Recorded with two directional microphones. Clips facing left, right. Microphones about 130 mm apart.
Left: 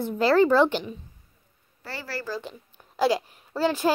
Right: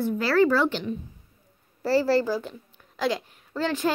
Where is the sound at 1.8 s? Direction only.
35° right (ahead or behind).